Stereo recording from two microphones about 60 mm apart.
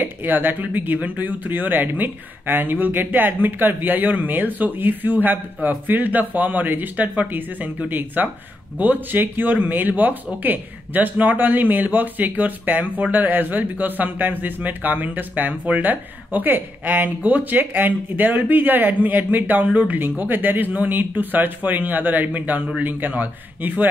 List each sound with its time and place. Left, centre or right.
0.0 s speech: right